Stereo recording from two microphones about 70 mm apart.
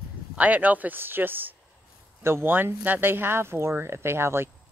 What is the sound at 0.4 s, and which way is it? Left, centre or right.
Speech, right.